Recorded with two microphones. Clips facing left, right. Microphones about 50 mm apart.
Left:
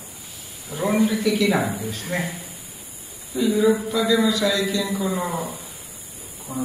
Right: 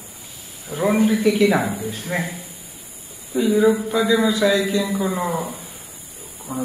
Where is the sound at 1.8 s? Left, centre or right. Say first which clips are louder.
Right 2 dB; right.